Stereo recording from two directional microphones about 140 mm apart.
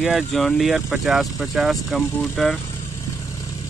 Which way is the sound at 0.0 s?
Centre (ahead or behind).